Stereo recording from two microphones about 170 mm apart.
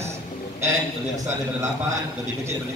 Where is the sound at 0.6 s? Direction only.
15° right (ahead or behind).